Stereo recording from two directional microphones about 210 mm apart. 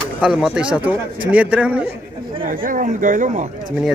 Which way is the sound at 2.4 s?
40° right (ahead or behind).